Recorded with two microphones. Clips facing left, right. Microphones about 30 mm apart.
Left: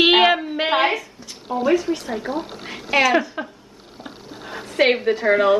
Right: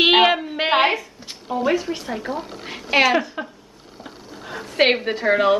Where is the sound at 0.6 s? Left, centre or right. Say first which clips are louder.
Right 1 dB; centre.